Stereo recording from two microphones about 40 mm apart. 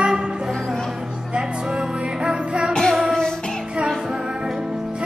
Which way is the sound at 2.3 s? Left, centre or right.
Right.